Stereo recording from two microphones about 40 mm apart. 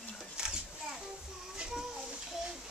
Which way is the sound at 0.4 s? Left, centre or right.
Right.